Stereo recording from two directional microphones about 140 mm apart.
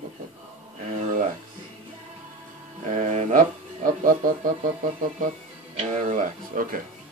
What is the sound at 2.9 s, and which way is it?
Music, 55° right (ahead or behind).